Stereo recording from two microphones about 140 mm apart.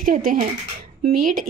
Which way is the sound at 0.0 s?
75° right (ahead or behind).